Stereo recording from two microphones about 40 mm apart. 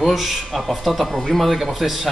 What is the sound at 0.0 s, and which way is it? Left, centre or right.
Speech, centre.